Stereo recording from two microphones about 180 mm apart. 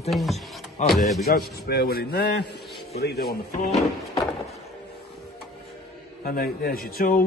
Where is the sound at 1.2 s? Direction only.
60° left (ahead or behind).